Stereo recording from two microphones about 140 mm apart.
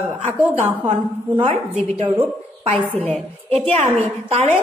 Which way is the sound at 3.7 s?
50° right (ahead or behind).